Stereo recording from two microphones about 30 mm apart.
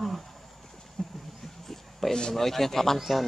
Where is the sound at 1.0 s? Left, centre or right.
Left.